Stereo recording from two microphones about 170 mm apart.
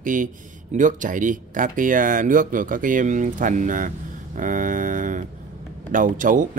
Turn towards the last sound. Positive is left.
turn(degrees=-50)  # may be behind; listen again after turning